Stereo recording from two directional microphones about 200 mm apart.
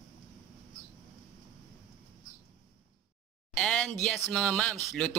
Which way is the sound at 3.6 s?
5° left (ahead or behind).